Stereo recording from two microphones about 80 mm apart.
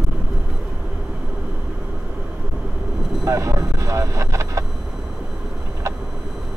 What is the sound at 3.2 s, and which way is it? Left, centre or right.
Vehicle, right.